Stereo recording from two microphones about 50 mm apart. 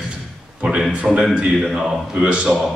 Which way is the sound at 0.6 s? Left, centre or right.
Centre.